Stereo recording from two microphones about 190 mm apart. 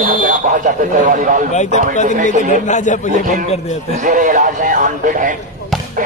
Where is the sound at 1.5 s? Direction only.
40° left (ahead or behind).